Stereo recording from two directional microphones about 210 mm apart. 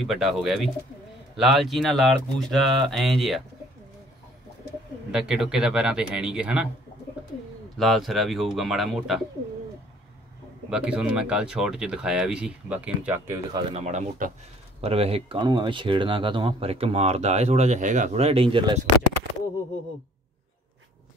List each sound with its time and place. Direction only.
0.0 s speech: centre (ahead or behind)
5.1 s speech: 5° right (ahead or behind)
7.7 s speech: centre (ahead or behind)
10.7 s speech: 5° right (ahead or behind)
13.7 s speech: 35° right (ahead or behind)